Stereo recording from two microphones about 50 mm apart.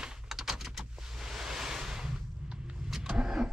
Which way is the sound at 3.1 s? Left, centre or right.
Right.